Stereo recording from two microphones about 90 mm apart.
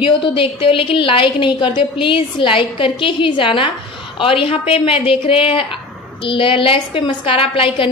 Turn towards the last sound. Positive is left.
turn(degrees=80)